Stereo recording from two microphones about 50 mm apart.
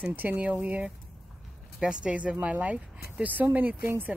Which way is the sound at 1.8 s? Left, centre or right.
Centre.